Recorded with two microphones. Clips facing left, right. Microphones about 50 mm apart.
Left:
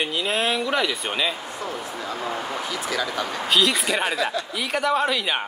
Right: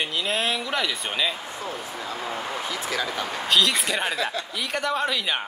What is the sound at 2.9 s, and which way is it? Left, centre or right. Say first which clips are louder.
Speech: left 2 dB; right.